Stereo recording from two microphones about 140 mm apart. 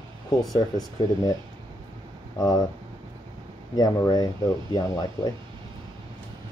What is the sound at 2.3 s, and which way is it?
Speech, 25° left (ahead or behind).